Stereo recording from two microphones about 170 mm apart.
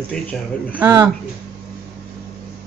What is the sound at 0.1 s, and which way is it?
Speech, 5° left (ahead or behind).